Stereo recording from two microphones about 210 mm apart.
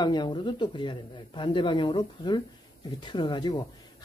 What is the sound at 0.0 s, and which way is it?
Speech, 20° left (ahead or behind).